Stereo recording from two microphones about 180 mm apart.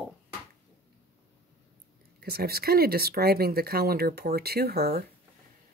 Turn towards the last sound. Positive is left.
turn(degrees=-60)  # may be behind; listen again after turning